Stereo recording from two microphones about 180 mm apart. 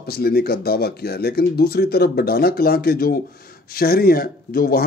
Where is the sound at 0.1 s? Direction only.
60° left (ahead or behind).